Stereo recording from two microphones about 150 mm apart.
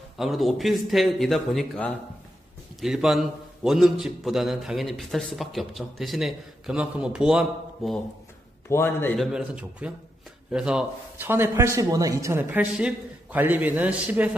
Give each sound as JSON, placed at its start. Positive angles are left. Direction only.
{"t": 0.2, "sound": "a man's voice", "side_deg": 0}
{"t": 8.6, "sound": "a man's voice", "side_deg": 15}
{"t": 9.1, "sound": "a man's voice", "side_deg": 0}